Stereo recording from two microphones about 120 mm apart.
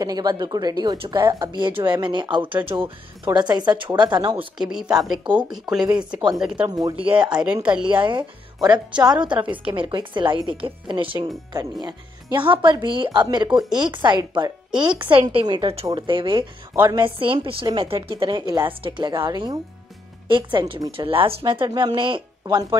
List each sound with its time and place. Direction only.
0.0 s speech: 35° right (ahead or behind)
4.6 s speech: 5° right (ahead or behind)
6.7 s speech: 30° right (ahead or behind)
7.2 s speech: 10° right (ahead or behind)
7.9 s speech: 45° right (ahead or behind)
21.6 s speech: 40° right (ahead or behind)